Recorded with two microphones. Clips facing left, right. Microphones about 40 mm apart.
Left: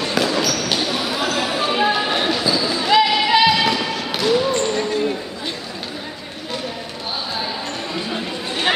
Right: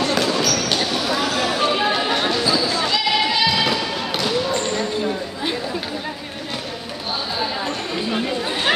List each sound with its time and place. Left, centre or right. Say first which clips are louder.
0.0 s basketball bounce: even; centre
2.9 s a sound: left 9 dB; left
3.4 s music: left 3 dB; centre